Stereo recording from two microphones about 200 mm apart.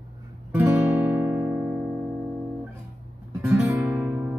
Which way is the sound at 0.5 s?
10° right (ahead or behind).